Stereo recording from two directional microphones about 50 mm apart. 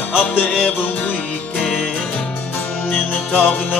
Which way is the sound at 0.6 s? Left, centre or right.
Left.